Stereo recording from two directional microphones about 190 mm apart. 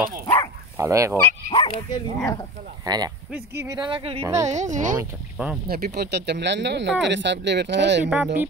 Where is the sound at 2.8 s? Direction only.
20° right (ahead or behind).